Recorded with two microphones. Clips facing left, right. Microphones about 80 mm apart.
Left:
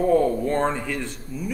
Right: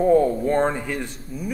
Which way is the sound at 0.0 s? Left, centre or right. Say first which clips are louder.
Right 2 dB; centre.